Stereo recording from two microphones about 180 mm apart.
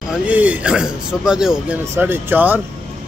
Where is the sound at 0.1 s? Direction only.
10° right (ahead or behind).